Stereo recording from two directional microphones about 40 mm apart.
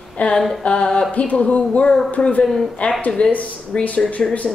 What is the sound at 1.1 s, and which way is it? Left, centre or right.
Speech, left.